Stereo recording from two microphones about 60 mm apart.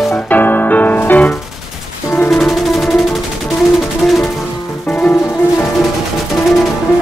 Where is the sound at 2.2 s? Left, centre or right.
Centre.